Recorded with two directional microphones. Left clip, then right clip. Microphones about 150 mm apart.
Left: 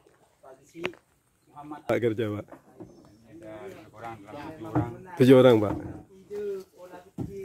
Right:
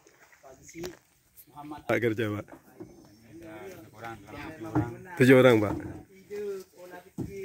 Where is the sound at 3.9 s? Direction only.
Centre (ahead or behind).